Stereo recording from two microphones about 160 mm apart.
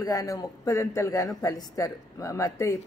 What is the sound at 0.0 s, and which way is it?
A man's voice, 20° left (ahead or behind).